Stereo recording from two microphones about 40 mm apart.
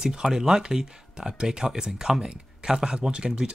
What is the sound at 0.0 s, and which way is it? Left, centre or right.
Speech, centre.